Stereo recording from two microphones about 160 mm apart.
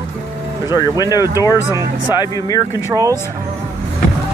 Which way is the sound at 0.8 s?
25° left (ahead or behind).